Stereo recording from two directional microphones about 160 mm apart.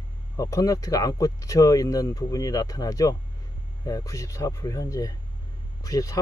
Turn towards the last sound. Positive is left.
turn(degrees=20)  # may be behind; listen again after turning